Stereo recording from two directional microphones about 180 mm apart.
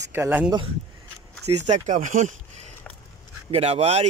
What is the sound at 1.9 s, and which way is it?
Speech, 45° right (ahead or behind).